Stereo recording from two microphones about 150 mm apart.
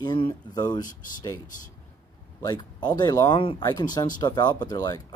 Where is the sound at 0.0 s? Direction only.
30° left (ahead or behind).